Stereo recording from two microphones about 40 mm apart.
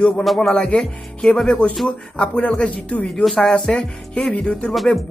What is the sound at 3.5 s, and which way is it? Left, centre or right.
Speech, left.